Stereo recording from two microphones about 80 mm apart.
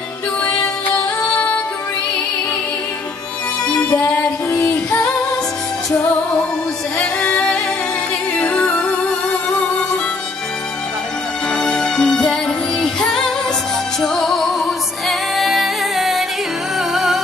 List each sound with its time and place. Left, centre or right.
3.7 s music: left
4.5 s female singing: left
7.0 s music: centre
11.5 s music: centre